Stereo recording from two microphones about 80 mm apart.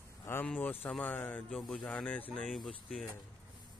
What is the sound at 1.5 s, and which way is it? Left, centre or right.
Speech, centre.